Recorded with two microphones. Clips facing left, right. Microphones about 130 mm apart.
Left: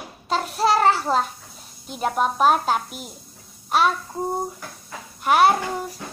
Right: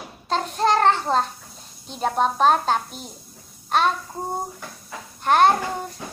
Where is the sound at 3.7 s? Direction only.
5° left (ahead or behind).